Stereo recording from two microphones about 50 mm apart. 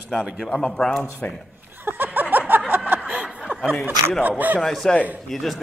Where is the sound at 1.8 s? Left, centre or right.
Right.